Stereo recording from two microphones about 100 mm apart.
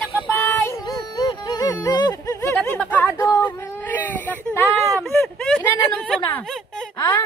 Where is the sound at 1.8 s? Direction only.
40° left (ahead or behind).